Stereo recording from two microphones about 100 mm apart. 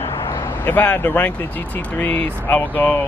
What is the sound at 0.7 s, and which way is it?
Speech, 20° left (ahead or behind).